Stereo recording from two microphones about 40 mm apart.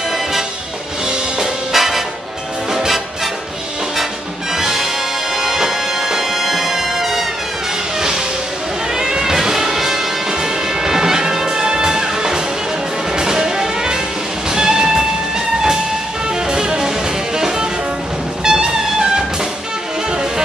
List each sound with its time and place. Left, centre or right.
0.1 s music: centre
1.0 s music: right
1.7 s music: centre
3.9 s music: centre